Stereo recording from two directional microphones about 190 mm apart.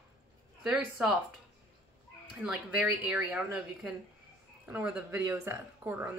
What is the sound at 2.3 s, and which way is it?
A woman's voice, 5° right (ahead or behind).